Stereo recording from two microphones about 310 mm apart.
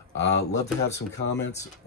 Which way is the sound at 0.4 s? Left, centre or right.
Left.